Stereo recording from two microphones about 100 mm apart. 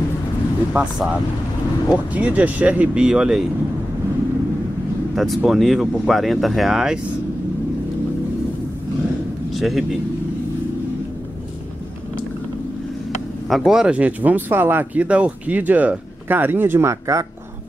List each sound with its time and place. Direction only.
0.8 s speech: 15° right (ahead or behind)
2.1 s speech: 15° right (ahead or behind)
5.1 s speech: centre (ahead or behind)
9.5 s a man's voice: centre (ahead or behind)
13.5 s speech: 5° right (ahead or behind); by 17.3 s 30° right (ahead or behind)